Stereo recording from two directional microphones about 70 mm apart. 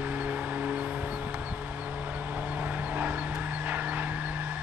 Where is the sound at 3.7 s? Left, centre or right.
Right.